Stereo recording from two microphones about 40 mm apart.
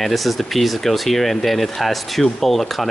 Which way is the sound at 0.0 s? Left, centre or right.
Centre.